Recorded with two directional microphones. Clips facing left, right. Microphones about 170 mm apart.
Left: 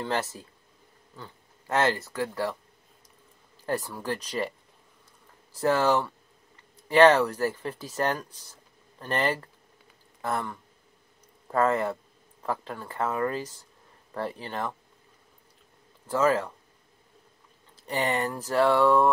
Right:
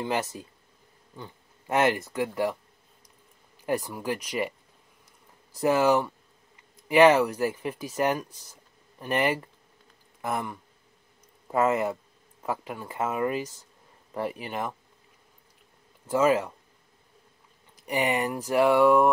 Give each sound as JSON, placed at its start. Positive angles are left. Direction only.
{"t": 0.0, "sound": "speech", "side_deg": -15}
{"t": 3.6, "sound": "speech", "side_deg": -15}
{"t": 5.6, "sound": "speech", "side_deg": -10}
{"t": 16.1, "sound": "speech", "side_deg": -10}
{"t": 17.7, "sound": "speech", "side_deg": -15}